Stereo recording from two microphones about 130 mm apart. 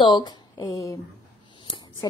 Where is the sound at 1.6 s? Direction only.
35° left (ahead or behind).